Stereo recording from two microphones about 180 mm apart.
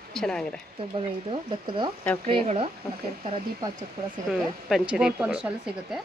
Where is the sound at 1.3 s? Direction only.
25° right (ahead or behind).